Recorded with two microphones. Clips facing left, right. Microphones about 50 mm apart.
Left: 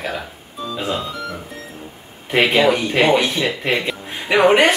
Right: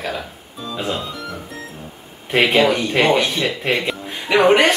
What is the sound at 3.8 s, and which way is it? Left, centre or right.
Music, centre.